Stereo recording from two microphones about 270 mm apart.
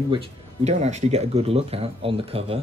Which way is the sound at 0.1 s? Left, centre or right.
Right.